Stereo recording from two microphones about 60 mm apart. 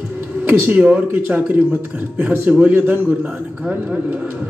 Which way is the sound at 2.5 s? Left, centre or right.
Right.